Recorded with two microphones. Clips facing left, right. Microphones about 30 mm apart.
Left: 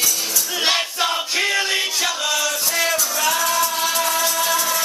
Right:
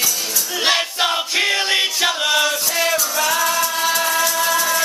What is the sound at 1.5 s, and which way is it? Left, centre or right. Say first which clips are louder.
Music: right 3 dB; right.